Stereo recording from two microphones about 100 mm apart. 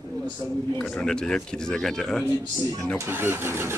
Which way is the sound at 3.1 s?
25° right (ahead or behind).